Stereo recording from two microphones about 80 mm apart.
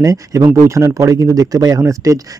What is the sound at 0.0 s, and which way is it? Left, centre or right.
Speech, right.